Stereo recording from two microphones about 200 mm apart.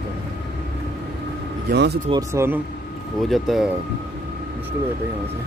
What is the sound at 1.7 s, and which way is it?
Speech, 55° right (ahead or behind).